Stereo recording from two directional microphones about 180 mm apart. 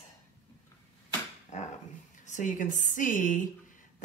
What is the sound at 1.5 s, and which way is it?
Dog, 40° left (ahead or behind).